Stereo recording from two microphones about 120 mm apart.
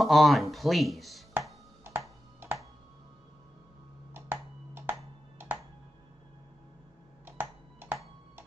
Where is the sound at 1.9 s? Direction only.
20° right (ahead or behind).